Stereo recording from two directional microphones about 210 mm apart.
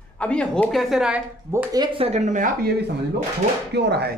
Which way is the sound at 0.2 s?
5° left (ahead or behind).